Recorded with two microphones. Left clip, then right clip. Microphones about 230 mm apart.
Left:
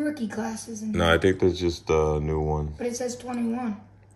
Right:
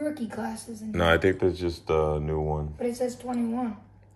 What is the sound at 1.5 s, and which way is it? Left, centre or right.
Speech, centre.